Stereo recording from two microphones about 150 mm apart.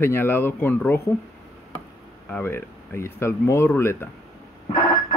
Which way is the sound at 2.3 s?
15° left (ahead or behind).